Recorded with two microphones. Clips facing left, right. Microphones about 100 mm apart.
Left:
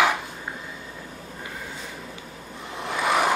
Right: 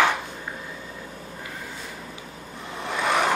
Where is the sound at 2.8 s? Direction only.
Centre (ahead or behind).